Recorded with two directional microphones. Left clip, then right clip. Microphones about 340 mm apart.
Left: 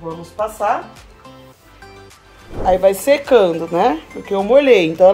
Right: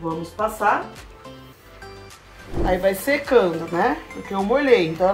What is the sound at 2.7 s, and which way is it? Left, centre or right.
Speech, centre.